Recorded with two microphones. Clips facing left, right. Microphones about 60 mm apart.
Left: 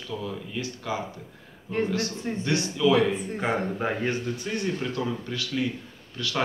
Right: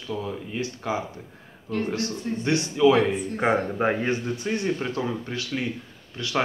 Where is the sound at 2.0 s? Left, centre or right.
Left.